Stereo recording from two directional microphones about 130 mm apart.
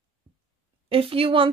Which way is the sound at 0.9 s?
45° right (ahead or behind).